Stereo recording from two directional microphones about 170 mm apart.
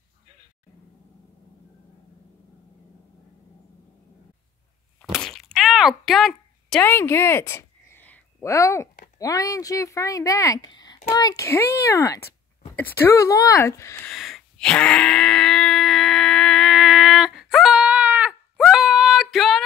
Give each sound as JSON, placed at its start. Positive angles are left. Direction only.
{"t": 5.0, "sound": "a sound", "side_deg": 0}
{"t": 6.8, "sound": "a woman's voice", "side_deg": 15}
{"t": 14.0, "sound": "wail", "side_deg": 0}